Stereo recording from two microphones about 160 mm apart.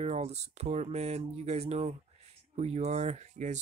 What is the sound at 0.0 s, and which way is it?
Speech, 45° right (ahead or behind).